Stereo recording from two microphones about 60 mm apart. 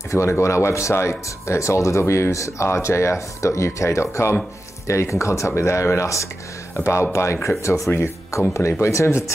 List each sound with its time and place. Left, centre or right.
0.1 s speech: left
7.6 s speech: left